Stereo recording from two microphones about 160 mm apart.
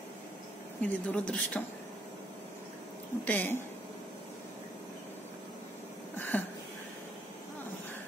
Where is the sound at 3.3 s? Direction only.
10° left (ahead or behind).